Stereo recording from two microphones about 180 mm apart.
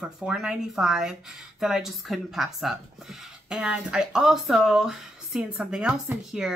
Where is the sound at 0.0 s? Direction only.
5° right (ahead or behind).